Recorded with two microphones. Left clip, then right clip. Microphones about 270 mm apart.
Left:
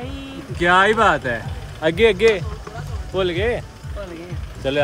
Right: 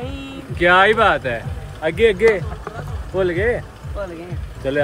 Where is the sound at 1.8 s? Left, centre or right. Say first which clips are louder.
Even; left.